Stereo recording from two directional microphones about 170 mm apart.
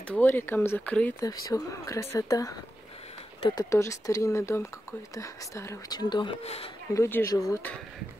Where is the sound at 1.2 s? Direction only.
20° left (ahead or behind).